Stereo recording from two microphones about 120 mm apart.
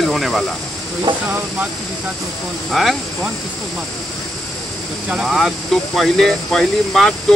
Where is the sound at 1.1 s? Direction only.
40° right (ahead or behind).